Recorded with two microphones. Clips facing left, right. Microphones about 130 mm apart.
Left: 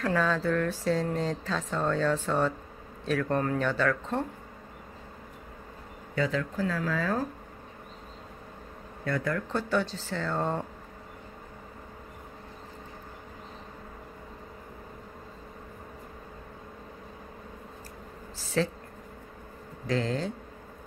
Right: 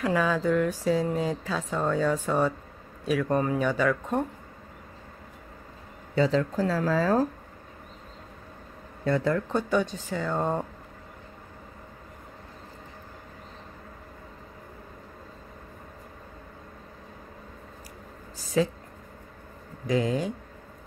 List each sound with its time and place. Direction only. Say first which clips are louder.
0.0 s speech: right 2 dB; 10° right (ahead or behind)
6.1 s speech: right 5 dB; 30° right (ahead or behind)
9.0 s speech: right 5 dB; 20° right (ahead or behind)
18.4 s a sound: right 3 dB; 10° right (ahead or behind)
19.9 s speech: right 3 dB; 15° right (ahead or behind)